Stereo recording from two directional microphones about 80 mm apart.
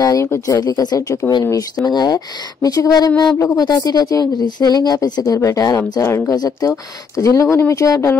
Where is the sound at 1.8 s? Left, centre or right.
Left.